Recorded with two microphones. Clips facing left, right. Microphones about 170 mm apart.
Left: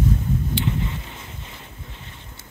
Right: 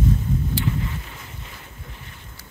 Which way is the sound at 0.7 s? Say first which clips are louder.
Left 1 dB; 20° left (ahead or behind).